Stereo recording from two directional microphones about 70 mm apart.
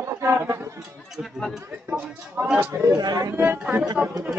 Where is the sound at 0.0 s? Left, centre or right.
Right.